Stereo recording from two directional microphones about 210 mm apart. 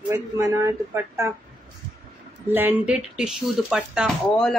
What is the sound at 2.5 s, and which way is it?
Speech, 10° right (ahead or behind).